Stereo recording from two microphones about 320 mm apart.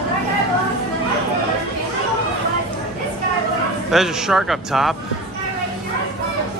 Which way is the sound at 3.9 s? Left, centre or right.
Centre.